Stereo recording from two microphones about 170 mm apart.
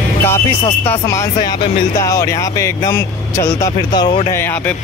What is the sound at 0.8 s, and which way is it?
Speech, 15° left (ahead or behind).